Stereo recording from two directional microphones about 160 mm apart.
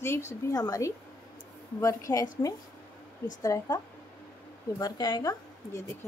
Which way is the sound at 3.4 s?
20° left (ahead or behind).